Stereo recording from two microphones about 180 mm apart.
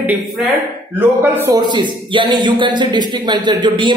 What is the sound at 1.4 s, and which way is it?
Speech, 20° right (ahead or behind).